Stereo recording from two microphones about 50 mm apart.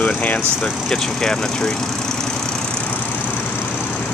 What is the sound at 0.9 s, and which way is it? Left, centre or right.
Speech, centre.